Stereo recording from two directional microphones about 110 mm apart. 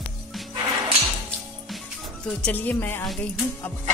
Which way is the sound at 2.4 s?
15° left (ahead or behind).